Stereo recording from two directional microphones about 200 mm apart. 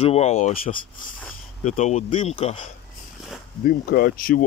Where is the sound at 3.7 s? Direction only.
50° left (ahead or behind).